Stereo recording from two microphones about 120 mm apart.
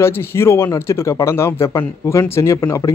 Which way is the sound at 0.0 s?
20° left (ahead or behind).